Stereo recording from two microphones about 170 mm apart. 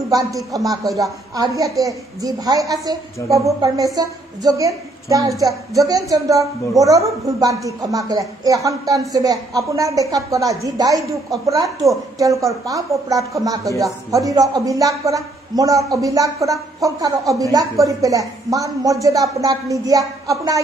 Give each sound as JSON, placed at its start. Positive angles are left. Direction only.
{"t": 0.1, "sound": "a man's voice", "side_deg": -20}
{"t": 0.8, "sound": "a woman's voice", "side_deg": 0}
{"t": 1.3, "sound": "a man's voice", "side_deg": -20}